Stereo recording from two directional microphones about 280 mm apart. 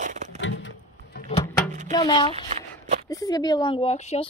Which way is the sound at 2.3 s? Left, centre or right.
Right.